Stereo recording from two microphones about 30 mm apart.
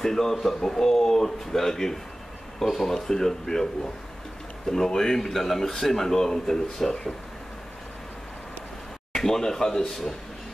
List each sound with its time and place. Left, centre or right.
0.0 s speech: centre
2.6 s speech: centre
2.9 s speech: centre
9.1 s speech: centre